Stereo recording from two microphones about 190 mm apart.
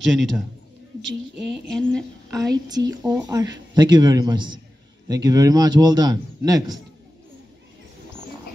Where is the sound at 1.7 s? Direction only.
5° left (ahead or behind).